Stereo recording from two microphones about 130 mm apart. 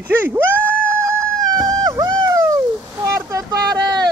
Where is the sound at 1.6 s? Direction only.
35° right (ahead or behind).